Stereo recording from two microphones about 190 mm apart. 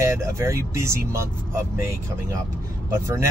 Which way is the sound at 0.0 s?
15° right (ahead or behind).